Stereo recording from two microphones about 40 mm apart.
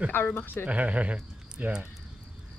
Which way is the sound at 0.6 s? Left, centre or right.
Right.